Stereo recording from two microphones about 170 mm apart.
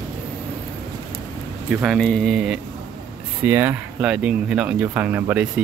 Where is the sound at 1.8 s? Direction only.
Centre (ahead or behind).